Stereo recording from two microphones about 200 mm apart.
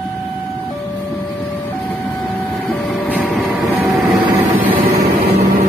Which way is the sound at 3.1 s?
10° right (ahead or behind).